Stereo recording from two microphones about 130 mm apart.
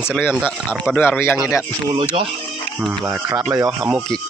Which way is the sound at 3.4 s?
15° right (ahead or behind).